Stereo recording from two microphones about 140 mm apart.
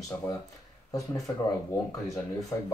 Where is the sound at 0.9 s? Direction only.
25° left (ahead or behind).